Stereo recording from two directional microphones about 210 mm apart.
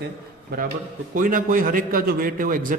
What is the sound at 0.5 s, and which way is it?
A man's voice, 45° right (ahead or behind).